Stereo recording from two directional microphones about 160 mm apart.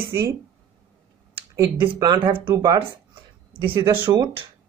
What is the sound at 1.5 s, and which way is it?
Speech, 20° right (ahead or behind).